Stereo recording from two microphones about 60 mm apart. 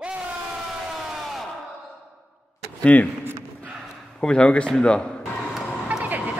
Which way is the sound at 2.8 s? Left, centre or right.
Left.